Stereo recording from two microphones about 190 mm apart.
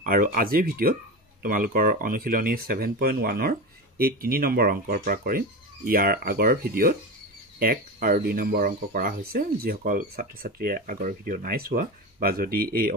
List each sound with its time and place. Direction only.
0.0 s speech: 45° right (ahead or behind)